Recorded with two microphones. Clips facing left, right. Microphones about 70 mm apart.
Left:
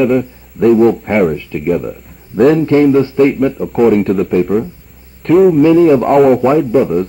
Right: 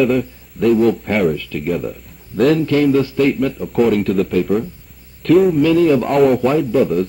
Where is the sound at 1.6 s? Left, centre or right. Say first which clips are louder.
Left 6 dB; centre.